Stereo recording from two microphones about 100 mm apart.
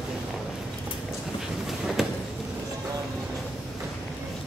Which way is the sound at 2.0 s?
5° right (ahead or behind).